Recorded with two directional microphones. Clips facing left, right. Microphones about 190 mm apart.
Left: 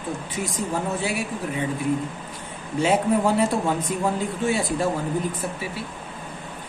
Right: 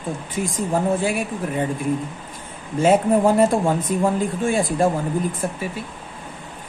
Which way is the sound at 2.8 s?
50° right (ahead or behind).